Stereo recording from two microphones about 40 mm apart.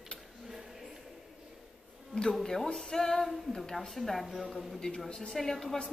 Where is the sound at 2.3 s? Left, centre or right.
Centre.